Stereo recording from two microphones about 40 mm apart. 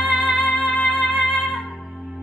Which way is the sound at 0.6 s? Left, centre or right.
Left.